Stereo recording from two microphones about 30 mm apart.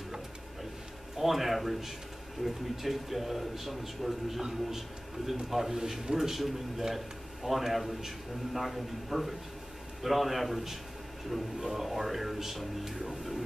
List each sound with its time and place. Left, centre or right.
1.1 s a man's voice: centre